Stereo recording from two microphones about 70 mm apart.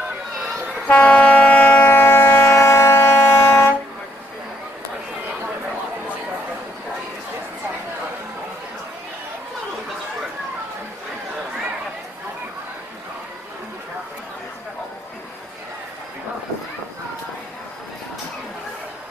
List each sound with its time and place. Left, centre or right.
0.8 s train: left